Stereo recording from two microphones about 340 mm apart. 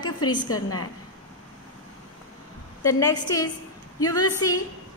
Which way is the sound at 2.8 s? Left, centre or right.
Centre.